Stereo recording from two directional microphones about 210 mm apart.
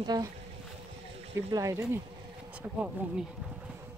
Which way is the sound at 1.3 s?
15° right (ahead or behind).